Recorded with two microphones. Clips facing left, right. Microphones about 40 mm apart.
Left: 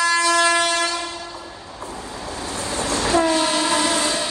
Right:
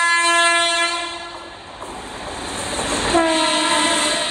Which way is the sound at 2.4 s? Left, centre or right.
Right.